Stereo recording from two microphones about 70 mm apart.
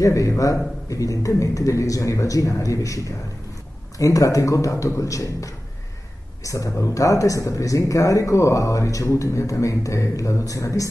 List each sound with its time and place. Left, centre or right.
0.0 s speech: left